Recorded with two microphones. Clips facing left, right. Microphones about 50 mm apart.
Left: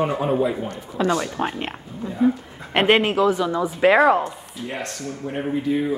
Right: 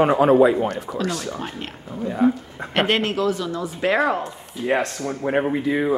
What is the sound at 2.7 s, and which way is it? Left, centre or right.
Speech, centre.